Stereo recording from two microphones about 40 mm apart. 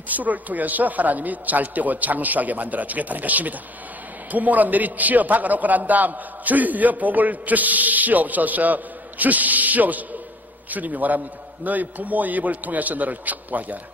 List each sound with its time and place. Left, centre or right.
0.1 s a man's voice: right